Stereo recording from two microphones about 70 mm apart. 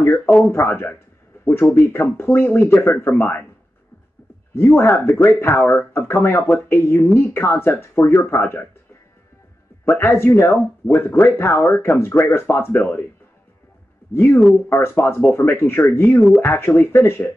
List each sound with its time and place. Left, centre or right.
0.2 s speech: centre
0.5 s speech: left
4.6 s speech: left
8.4 s speech: left
9.8 s speech: left
14.1 s speech: left